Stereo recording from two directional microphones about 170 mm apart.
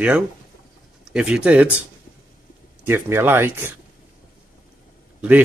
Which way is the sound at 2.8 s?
15° right (ahead or behind).